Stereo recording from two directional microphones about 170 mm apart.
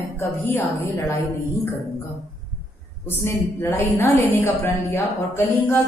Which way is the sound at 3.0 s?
15° left (ahead or behind).